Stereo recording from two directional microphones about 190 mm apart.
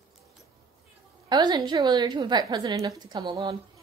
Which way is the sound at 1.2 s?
20° right (ahead or behind).